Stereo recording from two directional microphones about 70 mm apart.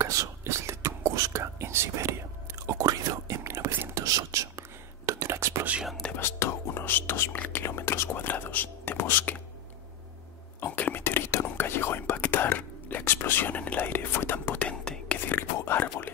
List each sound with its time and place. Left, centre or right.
0.0 s whispering: right
2.8 s whispering: right
6.1 s whispering: left
7.6 s whispering: left
8.2 s whispering: left
10.6 s whispering: left
15.2 s whispering: left